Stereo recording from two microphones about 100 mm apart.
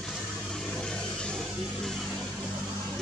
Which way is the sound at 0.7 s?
10° left (ahead or behind).